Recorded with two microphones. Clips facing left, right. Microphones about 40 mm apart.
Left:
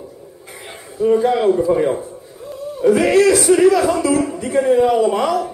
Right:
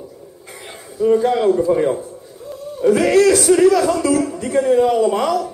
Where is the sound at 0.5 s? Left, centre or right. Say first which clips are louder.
Even; centre.